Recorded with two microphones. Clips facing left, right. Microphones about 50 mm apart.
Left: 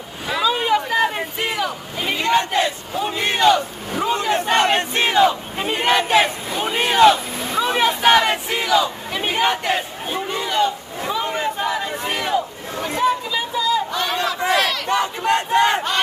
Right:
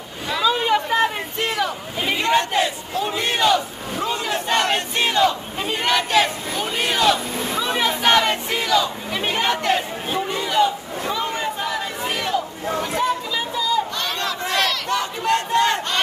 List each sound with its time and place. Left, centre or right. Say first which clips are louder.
0.3 s a sound: even; centre
2.0 s speech: even; centre
3.1 s battle cry: left 3 dB; centre
7.3 s vehicle: left 2 dB; centre
8.0 s battle cry: left 2 dB; centre
10.2 s a sound: right 1 dB; centre
14.9 s battle cry: left 2 dB; left